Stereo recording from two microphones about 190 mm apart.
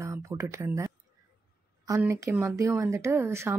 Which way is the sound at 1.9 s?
15° right (ahead or behind).